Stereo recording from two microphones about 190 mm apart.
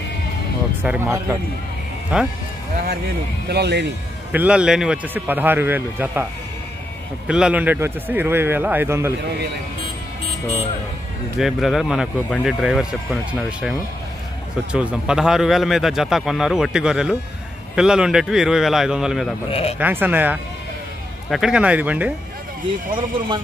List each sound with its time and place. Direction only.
0.8 s a man's voice: 15° right (ahead or behind)
3.4 s speech: 60° right (ahead or behind)
4.3 s a man's voice: 5° right (ahead or behind)
7.2 s a man's voice: 5° right (ahead or behind)
11.3 s a man's voice: centre (ahead or behind)
22.9 s speech: 25° right (ahead or behind)